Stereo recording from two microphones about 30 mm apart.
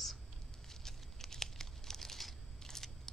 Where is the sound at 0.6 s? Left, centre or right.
Centre.